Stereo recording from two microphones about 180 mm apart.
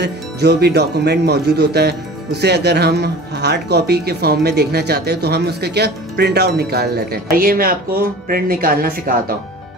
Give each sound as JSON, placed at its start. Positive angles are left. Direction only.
{"t": 0.0, "sound": "speech", "side_deg": -70}